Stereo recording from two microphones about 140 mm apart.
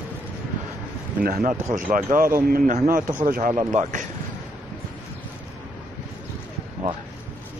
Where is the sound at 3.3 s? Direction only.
65° right (ahead or behind).